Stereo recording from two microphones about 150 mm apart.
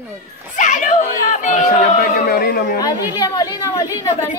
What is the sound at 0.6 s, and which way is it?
Speech, 60° left (ahead or behind).